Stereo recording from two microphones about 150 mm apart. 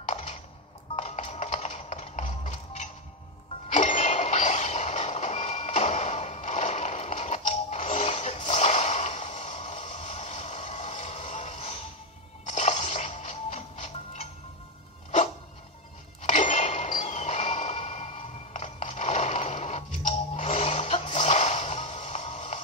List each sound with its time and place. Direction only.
0.9 s music: 50° left (ahead or behind)
3.6 s train: 50° left (ahead or behind)
12.4 s music: 50° left (ahead or behind)
16.2 s a sound: 50° left (ahead or behind)